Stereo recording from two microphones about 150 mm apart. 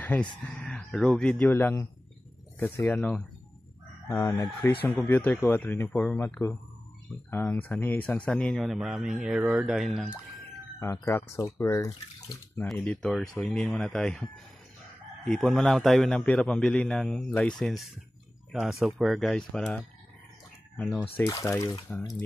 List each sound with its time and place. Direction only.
0.1 s speech: 10° left (ahead or behind)
4.1 s speech: 25° left (ahead or behind)
4.5 s speech: 15° left (ahead or behind); by 9.8 s 5° right (ahead or behind)
10.8 s speech: 15° left (ahead or behind)
12.7 s speech: 10° left (ahead or behind)
20.9 s speech: 10° left (ahead or behind)